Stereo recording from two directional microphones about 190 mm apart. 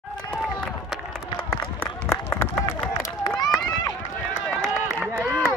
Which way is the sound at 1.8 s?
15° left (ahead or behind).